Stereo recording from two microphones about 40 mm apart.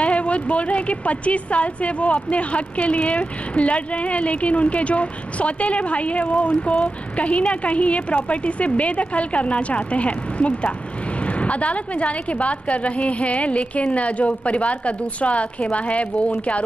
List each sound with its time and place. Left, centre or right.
0.0 s a woman's voice: left